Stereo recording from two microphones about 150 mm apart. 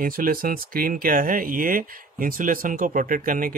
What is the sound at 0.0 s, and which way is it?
Speech, 70° right (ahead or behind).